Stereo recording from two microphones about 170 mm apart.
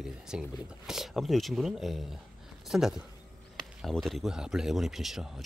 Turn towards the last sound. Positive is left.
turn(degrees=0)  # may be behind; listen again after turning